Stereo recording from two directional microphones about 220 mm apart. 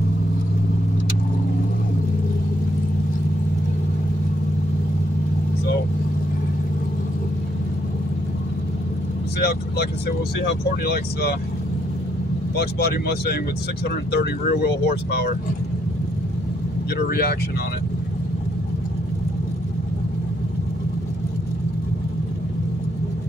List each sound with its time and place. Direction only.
9.4 s speech: 45° left (ahead or behind)
12.7 s speech: 45° left (ahead or behind)
16.9 s speech: 45° left (ahead or behind)